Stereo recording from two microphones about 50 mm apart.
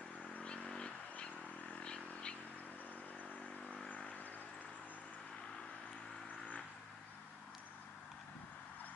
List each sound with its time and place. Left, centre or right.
0.2 s vehicle: left
0.5 s a sound: centre
1.1 s vehicle: left
3.9 s vehicle: left